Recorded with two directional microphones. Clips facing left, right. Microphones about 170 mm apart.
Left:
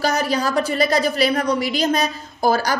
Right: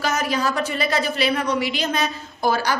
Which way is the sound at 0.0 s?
35° left (ahead or behind).